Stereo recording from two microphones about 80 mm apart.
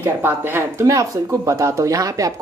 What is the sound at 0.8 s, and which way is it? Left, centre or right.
Speech, right.